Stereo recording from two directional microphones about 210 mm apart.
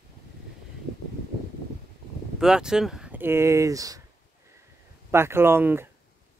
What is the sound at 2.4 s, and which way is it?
Speech, 5° right (ahead or behind).